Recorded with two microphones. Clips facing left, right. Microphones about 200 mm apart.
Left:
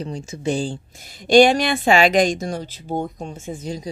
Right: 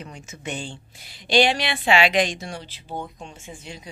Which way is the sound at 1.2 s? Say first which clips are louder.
Left 7 dB; 45° left (ahead or behind).